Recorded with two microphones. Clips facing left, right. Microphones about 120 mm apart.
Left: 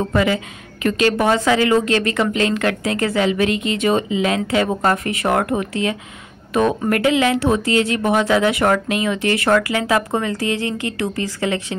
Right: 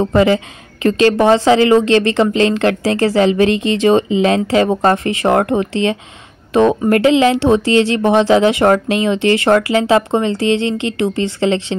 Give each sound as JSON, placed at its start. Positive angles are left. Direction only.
{"t": 0.0, "sound": "a woman's voice", "side_deg": -30}